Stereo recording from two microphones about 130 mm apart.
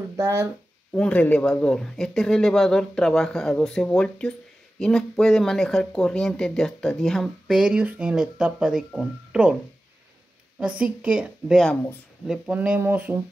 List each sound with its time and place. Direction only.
0.1 s speech: 25° right (ahead or behind)
0.9 s speech: 10° left (ahead or behind); by 9.6 s 5° right (ahead or behind)
10.6 s a woman's voice: 10° right (ahead or behind)
11.6 s speech: 10° left (ahead or behind)
12.3 s a woman's voice: 10° right (ahead or behind)